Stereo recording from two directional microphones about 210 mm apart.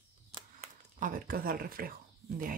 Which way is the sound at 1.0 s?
40° right (ahead or behind).